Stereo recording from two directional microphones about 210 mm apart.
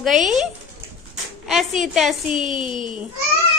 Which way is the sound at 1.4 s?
Centre (ahead or behind).